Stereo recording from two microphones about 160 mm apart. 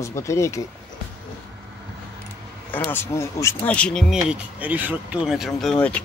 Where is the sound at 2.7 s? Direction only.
15° left (ahead or behind).